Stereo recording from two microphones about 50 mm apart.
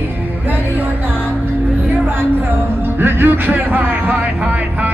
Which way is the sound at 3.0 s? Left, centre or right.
Right.